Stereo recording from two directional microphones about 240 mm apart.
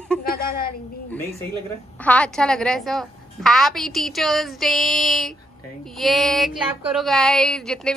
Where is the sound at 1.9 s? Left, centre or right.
Centre.